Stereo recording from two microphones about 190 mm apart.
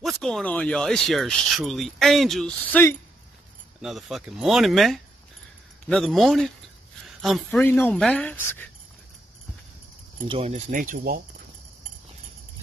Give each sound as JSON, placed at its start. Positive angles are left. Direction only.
{"t": 0.0, "sound": "speech", "side_deg": 5}
{"t": 3.8, "sound": "speech", "side_deg": 0}
{"t": 10.2, "sound": "speech", "side_deg": -30}
{"t": 10.8, "sound": "speech", "side_deg": -50}